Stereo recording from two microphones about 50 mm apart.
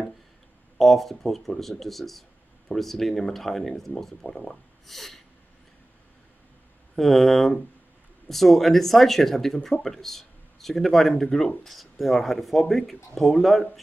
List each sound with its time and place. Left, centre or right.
0.7 s speech: centre
7.0 s speech: centre
11.6 s speech: centre